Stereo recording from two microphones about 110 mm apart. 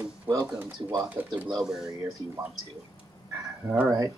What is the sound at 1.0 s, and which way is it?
Speech, 15° right (ahead or behind).